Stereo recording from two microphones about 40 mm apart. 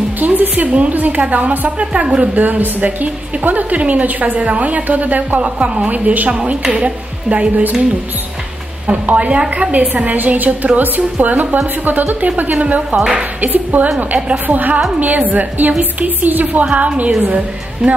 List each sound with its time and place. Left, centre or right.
0.2 s music: right
0.7 s a woman's voice: right
1.8 s a woman's voice: right
2.3 s a woman's voice: right
8.8 s a woman's voice: right